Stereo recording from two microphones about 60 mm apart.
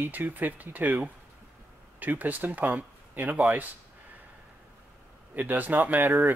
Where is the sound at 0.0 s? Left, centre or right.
Right.